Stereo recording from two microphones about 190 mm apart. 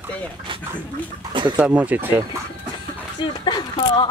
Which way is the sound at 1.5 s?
10° right (ahead or behind).